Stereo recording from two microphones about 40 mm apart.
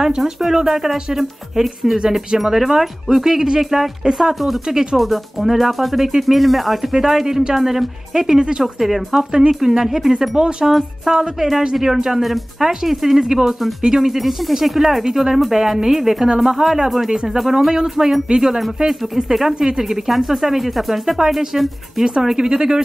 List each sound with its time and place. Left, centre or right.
0.2 s speech: centre
8.7 s speech: centre
10.3 s speech: right
10.7 s speech: centre